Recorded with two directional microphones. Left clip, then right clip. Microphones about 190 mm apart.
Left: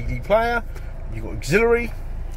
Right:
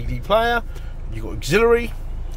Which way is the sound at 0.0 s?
Centre (ahead or behind).